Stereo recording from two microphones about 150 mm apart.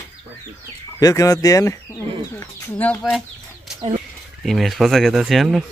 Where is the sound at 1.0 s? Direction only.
20° left (ahead or behind).